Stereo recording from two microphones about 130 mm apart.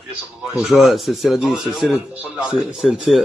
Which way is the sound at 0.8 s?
Centre (ahead or behind).